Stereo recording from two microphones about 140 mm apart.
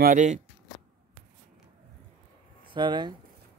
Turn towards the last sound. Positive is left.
turn(degrees=-35)  # may be behind; listen again after turning